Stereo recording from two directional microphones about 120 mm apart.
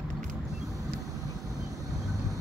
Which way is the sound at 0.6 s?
30° right (ahead or behind).